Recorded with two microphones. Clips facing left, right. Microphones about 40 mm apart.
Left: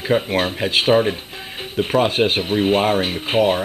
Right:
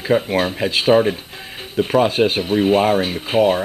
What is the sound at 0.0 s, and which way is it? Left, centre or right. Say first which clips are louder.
Speech: right 1 dB; centre.